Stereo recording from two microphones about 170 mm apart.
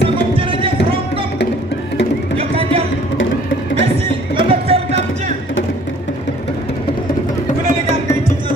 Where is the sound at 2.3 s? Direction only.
35° right (ahead or behind).